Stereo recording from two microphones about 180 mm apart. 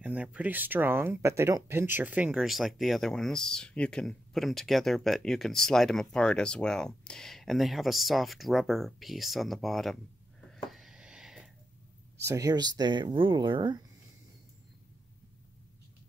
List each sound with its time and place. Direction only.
0.0 s speech: 5° right (ahead or behind)
10.5 s a sound: centre (ahead or behind)
12.3 s speech: 20° right (ahead or behind)